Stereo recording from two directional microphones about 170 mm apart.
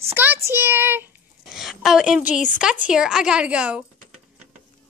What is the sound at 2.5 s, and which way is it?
A woman's voice, 5° right (ahead or behind).